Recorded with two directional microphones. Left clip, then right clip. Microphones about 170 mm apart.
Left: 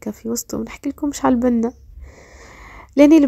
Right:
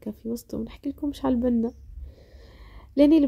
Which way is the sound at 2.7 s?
20° left (ahead or behind).